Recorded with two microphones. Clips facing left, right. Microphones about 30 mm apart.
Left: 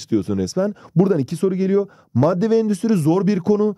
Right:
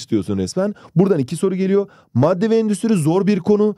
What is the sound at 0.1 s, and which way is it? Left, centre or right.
Speech, right.